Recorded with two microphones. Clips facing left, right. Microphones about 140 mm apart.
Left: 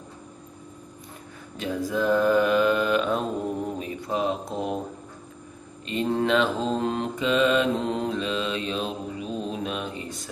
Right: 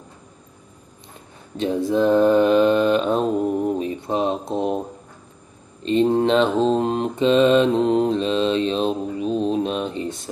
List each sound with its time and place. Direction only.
1.6 s mantra: 25° right (ahead or behind)
5.9 s mantra: 25° right (ahead or behind)